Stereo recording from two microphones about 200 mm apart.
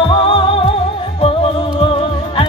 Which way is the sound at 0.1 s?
25° left (ahead or behind).